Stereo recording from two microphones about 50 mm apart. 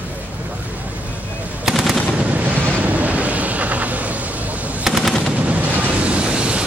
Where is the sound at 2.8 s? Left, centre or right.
Right.